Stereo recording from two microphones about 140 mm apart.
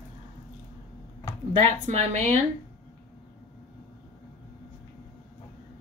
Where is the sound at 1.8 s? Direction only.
55° right (ahead or behind).